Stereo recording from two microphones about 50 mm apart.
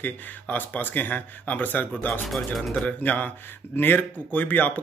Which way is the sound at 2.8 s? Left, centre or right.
Left.